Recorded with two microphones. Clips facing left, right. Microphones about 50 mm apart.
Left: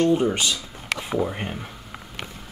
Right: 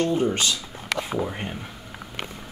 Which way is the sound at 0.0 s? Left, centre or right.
Centre.